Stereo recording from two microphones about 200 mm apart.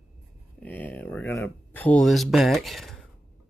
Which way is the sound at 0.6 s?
10° left (ahead or behind).